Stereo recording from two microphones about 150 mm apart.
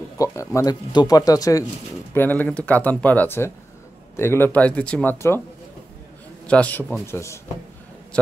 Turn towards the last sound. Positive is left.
turn(degrees=15)  # may be behind; listen again after turning